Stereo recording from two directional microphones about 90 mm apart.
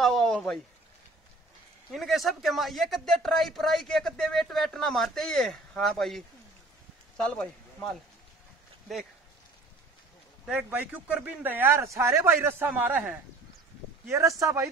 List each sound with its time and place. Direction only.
0.0 s a sound: 5° left (ahead or behind)
1.9 s speech: centre (ahead or behind)
10.4 s a man's voice: 15° right (ahead or behind)
14.0 s speech: 35° right (ahead or behind)